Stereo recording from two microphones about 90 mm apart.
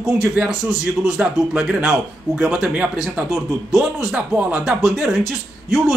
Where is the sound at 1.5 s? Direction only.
15° right (ahead or behind).